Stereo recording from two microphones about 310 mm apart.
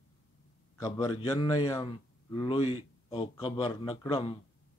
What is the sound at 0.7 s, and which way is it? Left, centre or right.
Speech, centre.